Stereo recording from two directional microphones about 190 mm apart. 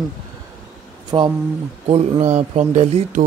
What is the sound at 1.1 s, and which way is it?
Speech, 25° right (ahead or behind).